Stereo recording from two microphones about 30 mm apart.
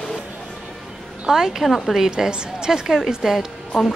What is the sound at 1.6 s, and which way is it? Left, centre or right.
Speech, centre.